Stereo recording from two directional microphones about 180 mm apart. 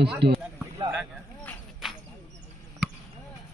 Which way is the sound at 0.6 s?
15° right (ahead or behind).